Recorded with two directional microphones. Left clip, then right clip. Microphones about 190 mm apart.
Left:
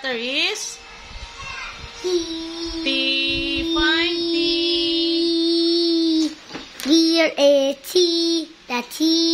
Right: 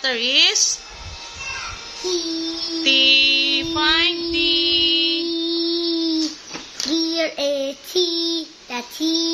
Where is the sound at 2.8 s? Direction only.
10° left (ahead or behind).